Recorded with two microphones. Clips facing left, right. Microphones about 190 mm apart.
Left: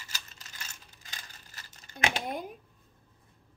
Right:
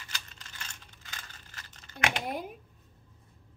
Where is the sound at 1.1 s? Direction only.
35° left (ahead or behind).